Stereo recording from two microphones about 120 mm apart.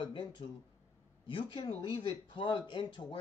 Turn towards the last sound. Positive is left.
turn(degrees=40)  # may be behind; listen again after turning